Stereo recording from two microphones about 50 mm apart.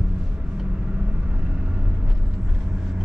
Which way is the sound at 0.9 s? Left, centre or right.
Right.